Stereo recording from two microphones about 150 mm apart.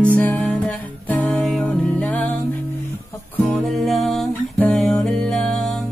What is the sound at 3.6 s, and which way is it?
Music, centre (ahead or behind).